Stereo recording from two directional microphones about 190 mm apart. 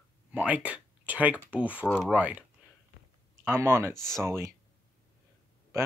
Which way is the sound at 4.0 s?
5° left (ahead or behind).